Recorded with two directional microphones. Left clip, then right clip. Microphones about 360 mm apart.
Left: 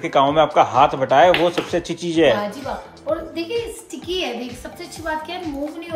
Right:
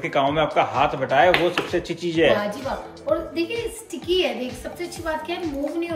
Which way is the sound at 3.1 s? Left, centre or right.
Centre.